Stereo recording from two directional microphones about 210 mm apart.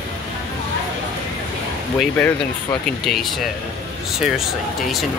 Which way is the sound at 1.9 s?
10° left (ahead or behind).